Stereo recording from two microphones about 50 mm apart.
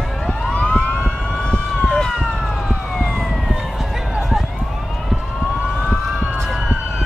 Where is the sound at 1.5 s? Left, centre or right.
Centre.